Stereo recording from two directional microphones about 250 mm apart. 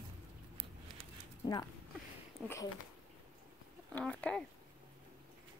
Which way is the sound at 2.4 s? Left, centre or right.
Centre.